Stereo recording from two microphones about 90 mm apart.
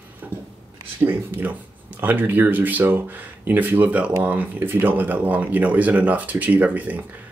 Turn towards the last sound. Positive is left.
turn(degrees=-15)  # may be behind; listen again after turning